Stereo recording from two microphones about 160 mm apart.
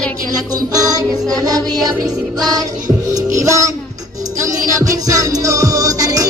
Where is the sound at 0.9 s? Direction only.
25° right (ahead or behind).